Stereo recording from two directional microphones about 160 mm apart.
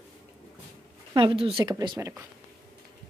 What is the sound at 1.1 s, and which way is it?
Speech, 30° right (ahead or behind).